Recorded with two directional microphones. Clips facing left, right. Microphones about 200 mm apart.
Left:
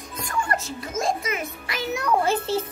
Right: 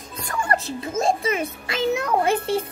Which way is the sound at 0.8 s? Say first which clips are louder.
Right 4 dB; 30° right (ahead or behind).